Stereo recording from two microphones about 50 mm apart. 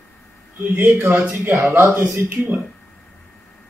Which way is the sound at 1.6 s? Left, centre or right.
Right.